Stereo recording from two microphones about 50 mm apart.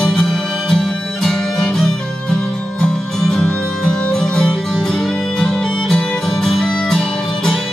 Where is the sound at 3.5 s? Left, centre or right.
Left.